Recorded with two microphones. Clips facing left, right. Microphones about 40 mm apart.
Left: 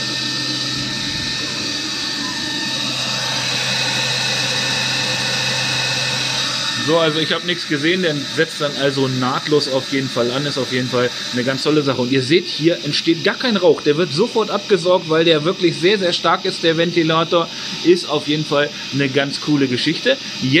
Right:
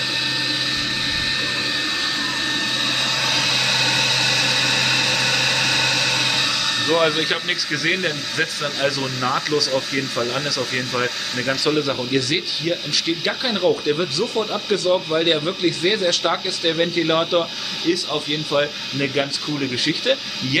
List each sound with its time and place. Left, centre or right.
3.3 s vehicle: right
4.1 s a sound: right
7.0 s speech: centre